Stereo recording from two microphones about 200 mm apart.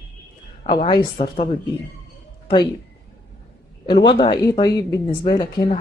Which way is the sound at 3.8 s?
25° left (ahead or behind).